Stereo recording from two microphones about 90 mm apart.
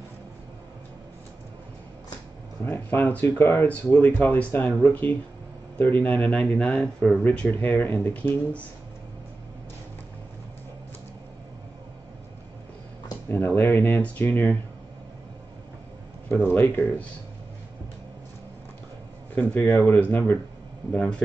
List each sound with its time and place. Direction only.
2.6 s speech: 25° left (ahead or behind)
13.3 s speech: 20° left (ahead or behind)
16.5 s speech: 25° left (ahead or behind)
19.3 s speech: 20° left (ahead or behind)